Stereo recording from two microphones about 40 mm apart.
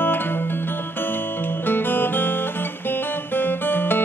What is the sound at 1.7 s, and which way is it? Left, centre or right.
Music, left.